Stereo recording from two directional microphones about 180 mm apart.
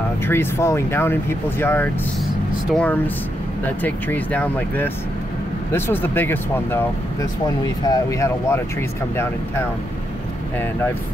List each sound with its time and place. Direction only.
0.3 s speech: 15° left (ahead or behind)